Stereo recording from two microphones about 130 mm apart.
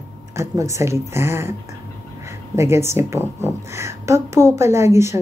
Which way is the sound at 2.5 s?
20° right (ahead or behind).